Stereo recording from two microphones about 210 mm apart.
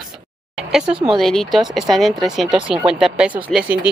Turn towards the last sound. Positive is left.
turn(degrees=-5)  # may be behind; listen again after turning